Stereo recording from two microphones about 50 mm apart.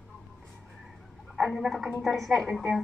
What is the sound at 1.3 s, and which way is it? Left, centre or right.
Gargling, centre.